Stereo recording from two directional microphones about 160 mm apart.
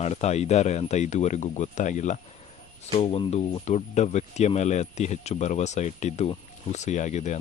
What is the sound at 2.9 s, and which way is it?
Speech, 35° left (ahead or behind).